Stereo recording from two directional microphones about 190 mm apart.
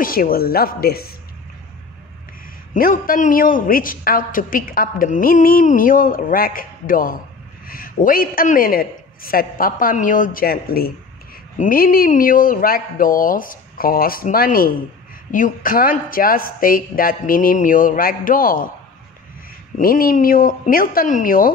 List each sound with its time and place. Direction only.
0.0 s a woman's voice: 50° left (ahead or behind)
2.7 s a woman's voice: 45° left (ahead or behind)
19.8 s a woman's voice: 50° left (ahead or behind)